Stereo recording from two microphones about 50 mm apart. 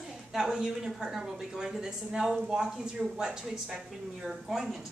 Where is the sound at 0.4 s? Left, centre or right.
Centre.